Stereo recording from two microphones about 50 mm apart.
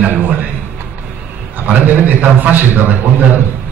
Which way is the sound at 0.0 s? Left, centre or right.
Right.